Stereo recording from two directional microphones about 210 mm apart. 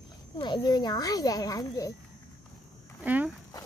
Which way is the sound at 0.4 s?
20° left (ahead or behind).